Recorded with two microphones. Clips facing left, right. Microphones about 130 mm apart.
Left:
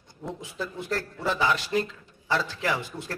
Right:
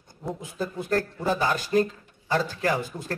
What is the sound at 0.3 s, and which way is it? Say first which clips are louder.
Speech: right 4 dB; 45° right (ahead or behind).